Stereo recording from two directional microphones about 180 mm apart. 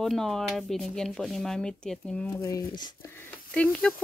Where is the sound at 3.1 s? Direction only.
5° left (ahead or behind).